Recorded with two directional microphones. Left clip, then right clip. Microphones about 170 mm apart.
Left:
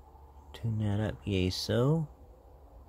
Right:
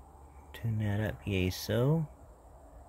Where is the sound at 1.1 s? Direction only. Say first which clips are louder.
Left 2 dB; 90° left.